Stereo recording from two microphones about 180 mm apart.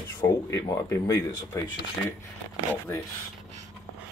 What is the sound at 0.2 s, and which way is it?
Speech, 15° left (ahead or behind).